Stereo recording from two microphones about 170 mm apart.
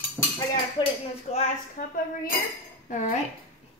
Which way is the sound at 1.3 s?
40° left (ahead or behind).